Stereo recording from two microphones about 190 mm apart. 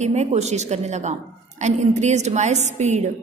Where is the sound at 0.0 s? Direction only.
35° right (ahead or behind).